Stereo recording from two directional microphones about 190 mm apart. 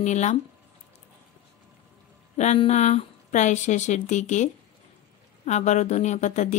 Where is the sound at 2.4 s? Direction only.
35° left (ahead or behind).